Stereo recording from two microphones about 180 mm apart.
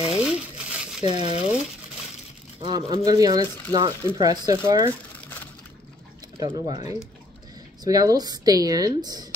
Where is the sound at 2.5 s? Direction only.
25° right (ahead or behind).